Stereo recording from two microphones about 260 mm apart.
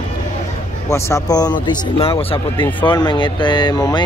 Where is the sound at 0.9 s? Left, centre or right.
Centre.